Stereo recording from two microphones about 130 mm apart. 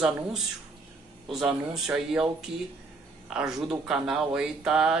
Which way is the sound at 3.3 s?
5° right (ahead or behind).